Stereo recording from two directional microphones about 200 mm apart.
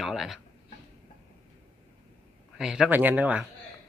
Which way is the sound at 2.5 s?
5° right (ahead or behind).